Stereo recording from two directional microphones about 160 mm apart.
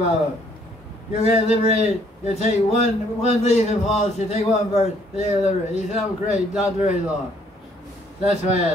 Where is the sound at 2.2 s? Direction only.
45° left (ahead or behind).